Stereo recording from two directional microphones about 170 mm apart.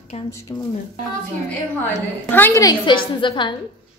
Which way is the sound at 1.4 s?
10° left (ahead or behind).